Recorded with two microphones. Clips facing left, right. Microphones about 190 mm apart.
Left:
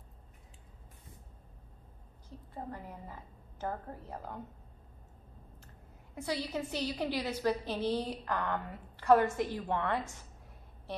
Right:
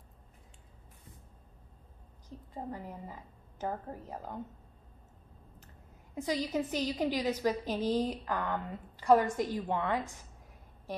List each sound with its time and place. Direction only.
2.5 s a woman's voice: 15° right (ahead or behind)
6.1 s a woman's voice: 15° right (ahead or behind)